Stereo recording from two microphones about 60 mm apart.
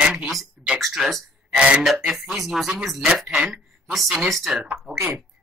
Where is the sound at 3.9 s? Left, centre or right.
Centre.